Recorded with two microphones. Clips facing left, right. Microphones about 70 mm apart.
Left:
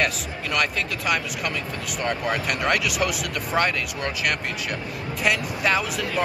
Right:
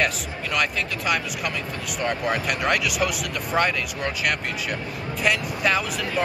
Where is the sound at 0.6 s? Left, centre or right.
Centre.